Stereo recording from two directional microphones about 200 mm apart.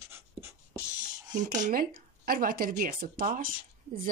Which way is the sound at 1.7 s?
45° right (ahead or behind).